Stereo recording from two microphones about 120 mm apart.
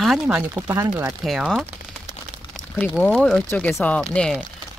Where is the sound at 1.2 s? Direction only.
Centre (ahead or behind).